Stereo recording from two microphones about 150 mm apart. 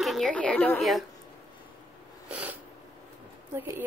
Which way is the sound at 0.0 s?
Centre (ahead or behind).